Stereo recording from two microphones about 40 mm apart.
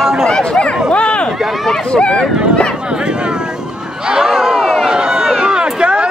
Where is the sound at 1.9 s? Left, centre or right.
Centre.